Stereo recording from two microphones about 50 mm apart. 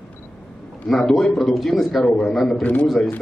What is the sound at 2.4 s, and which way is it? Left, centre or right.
Speech, centre.